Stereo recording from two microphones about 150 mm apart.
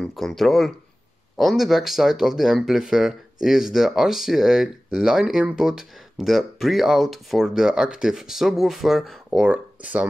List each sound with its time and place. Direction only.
0.0 s speech: centre (ahead or behind)